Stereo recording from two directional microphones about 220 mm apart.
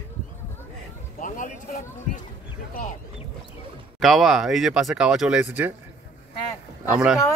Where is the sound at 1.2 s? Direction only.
35° left (ahead or behind).